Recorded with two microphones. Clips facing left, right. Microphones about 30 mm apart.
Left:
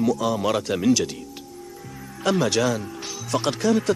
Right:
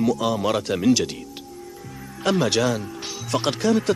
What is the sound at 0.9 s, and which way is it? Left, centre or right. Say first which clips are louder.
Speech: right 1 dB; centre.